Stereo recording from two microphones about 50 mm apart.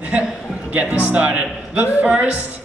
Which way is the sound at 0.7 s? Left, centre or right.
Right.